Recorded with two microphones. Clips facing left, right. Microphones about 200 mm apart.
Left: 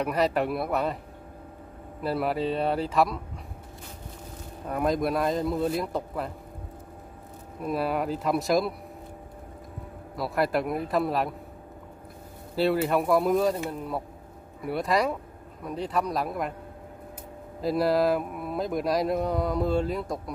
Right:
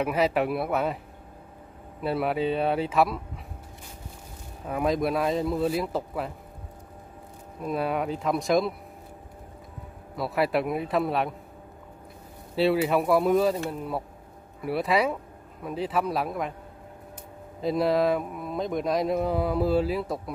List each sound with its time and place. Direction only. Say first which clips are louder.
0.0 s speech: right 1 dB; 5° right (ahead or behind)
2.0 s speech: right 1 dB; centre (ahead or behind)
4.6 s speech: even; centre (ahead or behind)
7.6 s speech: even; centre (ahead or behind)
10.1 s speech: right 1 dB; centre (ahead or behind)
12.5 s speech: right 1 dB; centre (ahead or behind)
17.6 s speech: even; centre (ahead or behind)